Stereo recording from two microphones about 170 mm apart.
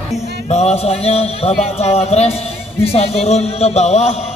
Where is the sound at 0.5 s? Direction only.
40° left (ahead or behind).